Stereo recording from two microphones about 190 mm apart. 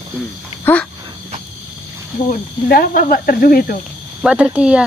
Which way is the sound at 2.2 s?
45° left (ahead or behind).